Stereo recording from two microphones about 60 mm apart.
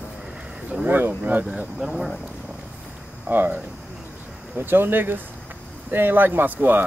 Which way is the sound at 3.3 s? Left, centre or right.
Right.